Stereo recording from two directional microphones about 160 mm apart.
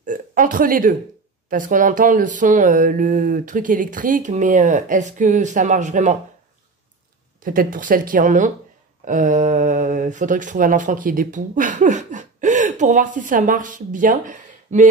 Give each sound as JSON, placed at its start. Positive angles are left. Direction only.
{"t": 0.0, "sound": "burping", "side_deg": -55}
{"t": 1.5, "sound": "a sound", "side_deg": -55}
{"t": 7.4, "sound": "speech", "side_deg": -55}